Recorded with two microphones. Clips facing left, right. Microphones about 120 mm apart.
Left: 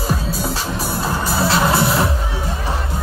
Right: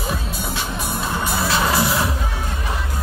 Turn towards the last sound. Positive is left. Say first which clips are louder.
# left 3 dB
turn(degrees=30)  # may be behind; listen again after turning